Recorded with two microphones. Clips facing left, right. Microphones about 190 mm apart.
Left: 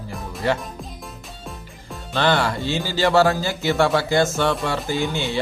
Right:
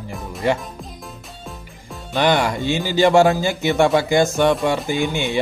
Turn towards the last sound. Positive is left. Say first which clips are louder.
# right 3 dB
turn(degrees=-20)  # may be behind; listen again after turning